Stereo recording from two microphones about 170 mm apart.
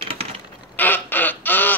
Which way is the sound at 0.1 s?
35° right (ahead or behind).